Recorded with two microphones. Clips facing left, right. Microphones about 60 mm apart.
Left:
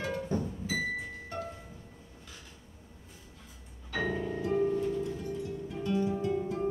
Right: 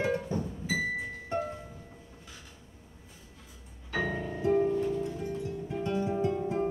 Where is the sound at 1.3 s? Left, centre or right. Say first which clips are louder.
Right 7 dB; right.